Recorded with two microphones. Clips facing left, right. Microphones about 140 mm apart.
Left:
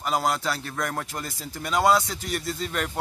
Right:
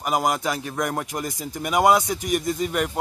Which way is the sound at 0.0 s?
15° right (ahead or behind).